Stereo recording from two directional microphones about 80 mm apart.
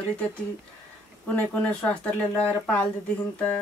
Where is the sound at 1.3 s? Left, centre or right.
Centre.